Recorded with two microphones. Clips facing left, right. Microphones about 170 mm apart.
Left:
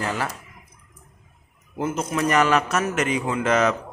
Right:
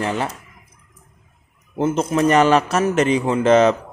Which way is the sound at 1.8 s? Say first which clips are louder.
Right 6 dB; 25° right (ahead or behind).